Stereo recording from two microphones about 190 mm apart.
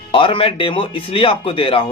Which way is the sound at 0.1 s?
30° left (ahead or behind).